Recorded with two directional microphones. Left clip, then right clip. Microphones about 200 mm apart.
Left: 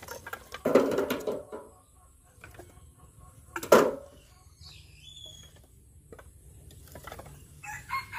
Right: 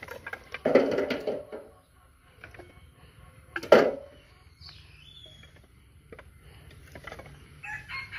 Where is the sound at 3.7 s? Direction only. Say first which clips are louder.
Right 2 dB; centre (ahead or behind).